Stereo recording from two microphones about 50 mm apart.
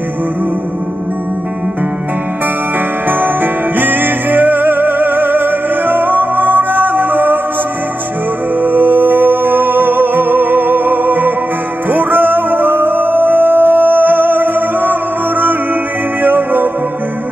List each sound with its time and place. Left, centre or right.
3.7 s music: right
8.5 s music: right